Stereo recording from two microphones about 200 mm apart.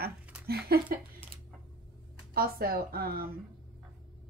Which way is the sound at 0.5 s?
50° right (ahead or behind).